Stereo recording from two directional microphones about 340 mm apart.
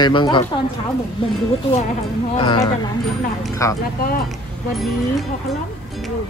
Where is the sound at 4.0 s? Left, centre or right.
Left.